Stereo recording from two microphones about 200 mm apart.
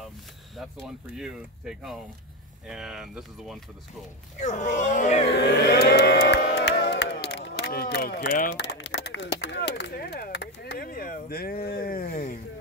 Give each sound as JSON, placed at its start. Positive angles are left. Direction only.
{"t": 0.6, "sound": "speech", "side_deg": 0}
{"t": 4.4, "sound": "speech", "side_deg": 35}
{"t": 5.3, "sound": "a sound", "side_deg": 55}